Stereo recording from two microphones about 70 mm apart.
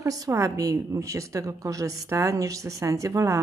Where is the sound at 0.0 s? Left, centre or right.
Right.